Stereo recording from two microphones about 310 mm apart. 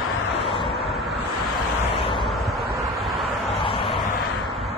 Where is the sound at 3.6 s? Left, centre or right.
Centre.